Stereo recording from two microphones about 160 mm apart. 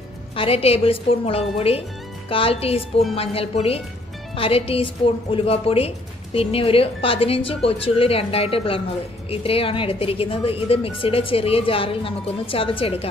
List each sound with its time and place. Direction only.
0.4 s a woman's voice: 40° left (ahead or behind)